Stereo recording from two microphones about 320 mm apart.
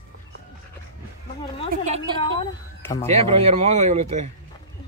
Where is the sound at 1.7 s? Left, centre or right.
Right.